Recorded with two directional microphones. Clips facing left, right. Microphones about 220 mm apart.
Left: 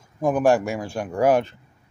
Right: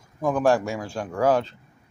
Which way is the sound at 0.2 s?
15° left (ahead or behind).